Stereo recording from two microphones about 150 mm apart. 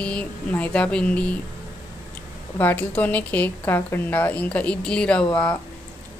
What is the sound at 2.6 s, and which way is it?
A woman's voice, 10° left (ahead or behind).